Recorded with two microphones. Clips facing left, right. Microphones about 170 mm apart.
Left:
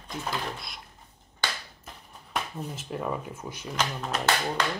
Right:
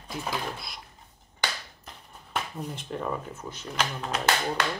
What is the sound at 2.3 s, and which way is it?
Speech, 5° left (ahead or behind).